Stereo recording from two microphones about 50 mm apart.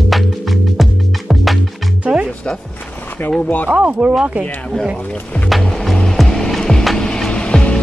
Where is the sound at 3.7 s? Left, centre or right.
Right.